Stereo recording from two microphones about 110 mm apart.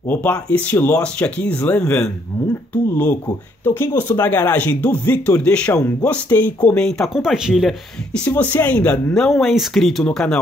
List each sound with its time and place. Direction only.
0.0 s speech: 15° left (ahead or behind)
3.6 s speech: 20° left (ahead or behind); by 7.7 s 5° right (ahead or behind)
8.3 s speech: 20° left (ahead or behind); by 10.0 s centre (ahead or behind)
10.0 s speech: 10° left (ahead or behind)